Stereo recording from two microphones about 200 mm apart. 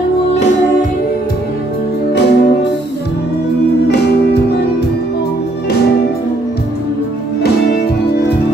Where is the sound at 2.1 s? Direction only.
60° left (ahead or behind).